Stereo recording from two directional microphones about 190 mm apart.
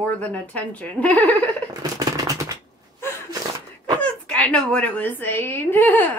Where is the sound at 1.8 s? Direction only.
20° right (ahead or behind).